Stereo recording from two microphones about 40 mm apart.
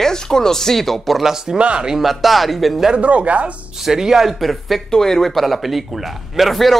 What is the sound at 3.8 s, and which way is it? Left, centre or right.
Speech, centre.